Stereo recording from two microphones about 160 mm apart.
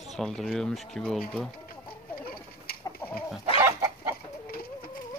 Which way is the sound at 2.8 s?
10° left (ahead or behind).